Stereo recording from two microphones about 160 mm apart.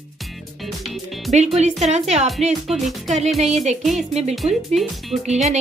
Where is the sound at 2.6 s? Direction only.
Centre (ahead or behind).